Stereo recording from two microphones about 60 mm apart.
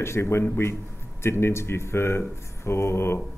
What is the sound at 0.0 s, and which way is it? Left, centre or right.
Speech, left.